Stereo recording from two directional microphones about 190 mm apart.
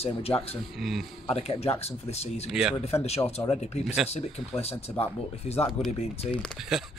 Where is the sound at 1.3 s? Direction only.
35° left (ahead or behind).